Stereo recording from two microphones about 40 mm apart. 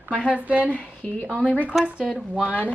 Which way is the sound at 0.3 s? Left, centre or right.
Right.